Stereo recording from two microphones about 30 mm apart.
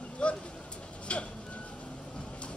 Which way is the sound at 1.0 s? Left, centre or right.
Left.